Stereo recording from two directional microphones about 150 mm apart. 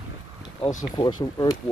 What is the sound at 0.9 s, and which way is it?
Speech, 25° left (ahead or behind).